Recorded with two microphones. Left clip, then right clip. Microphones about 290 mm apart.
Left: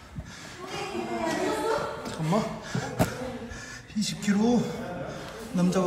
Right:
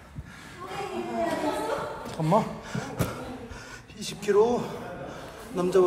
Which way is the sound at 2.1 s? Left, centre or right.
Centre.